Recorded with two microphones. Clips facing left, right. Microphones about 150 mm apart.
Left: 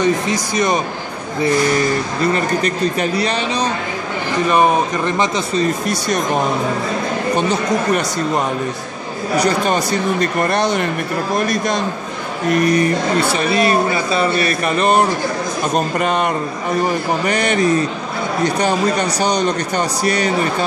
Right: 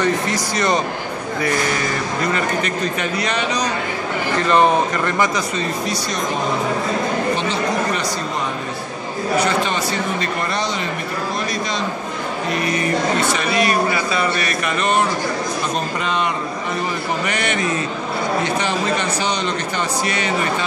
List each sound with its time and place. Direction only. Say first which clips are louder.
0.0 s speech: left 3 dB; 15° left (ahead or behind)
2.3 s a man's voice: left 3 dB; 35° left (ahead or behind)
4.4 s speech: left 1 dB; 15° left (ahead or behind)
7.3 s speech: left 3 dB; 45° left (ahead or behind)
9.4 s a man's voice: left 5 dB; 40° left (ahead or behind)
10.4 s speech: left 6 dB; 55° left (ahead or behind)
13.2 s a man's voice: left 3 dB; 30° left (ahead or behind)
16.0 s speech: left 3 dB; 50° left (ahead or behind)
17.3 s a man's voice: left 9 dB; 35° left (ahead or behind)